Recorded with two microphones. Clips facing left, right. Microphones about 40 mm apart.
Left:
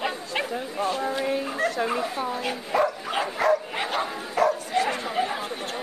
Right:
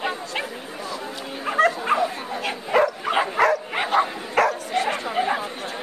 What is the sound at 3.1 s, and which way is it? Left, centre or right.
Dog, right.